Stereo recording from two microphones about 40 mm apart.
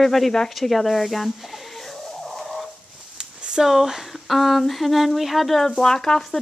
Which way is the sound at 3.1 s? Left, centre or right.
Right.